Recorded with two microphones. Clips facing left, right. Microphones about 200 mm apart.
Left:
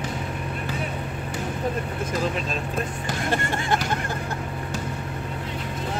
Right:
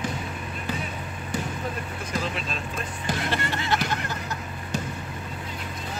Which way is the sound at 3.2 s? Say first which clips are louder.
Left 4 dB; 45° left (ahead or behind).